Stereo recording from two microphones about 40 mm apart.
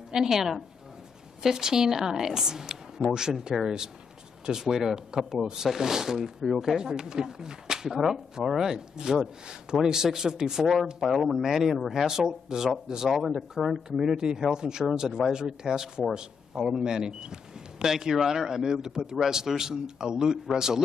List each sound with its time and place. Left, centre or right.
0.1 s speech: centre
6.8 s a man's voice: centre
13.1 s speech: centre
13.7 s a man's voice: centre